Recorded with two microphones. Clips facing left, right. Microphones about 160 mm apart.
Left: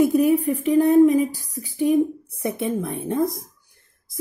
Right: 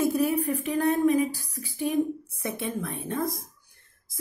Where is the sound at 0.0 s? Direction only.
20° left (ahead or behind).